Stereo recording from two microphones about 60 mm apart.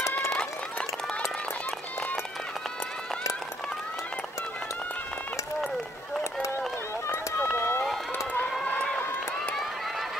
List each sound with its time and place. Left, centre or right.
0.3 s run: centre
7.5 s run: left
8.3 s run: left